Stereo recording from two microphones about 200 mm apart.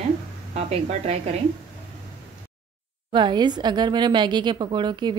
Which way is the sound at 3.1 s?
20° right (ahead or behind).